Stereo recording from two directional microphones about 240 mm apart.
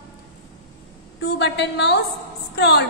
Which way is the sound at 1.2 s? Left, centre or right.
Left.